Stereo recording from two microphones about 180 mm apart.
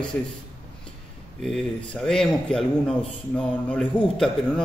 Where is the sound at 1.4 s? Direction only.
5° left (ahead or behind).